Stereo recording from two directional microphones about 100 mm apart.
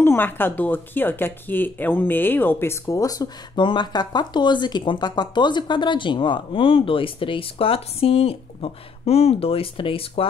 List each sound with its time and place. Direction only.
0.0 s speech: 20° left (ahead or behind)
3.5 s speech: 50° left (ahead or behind)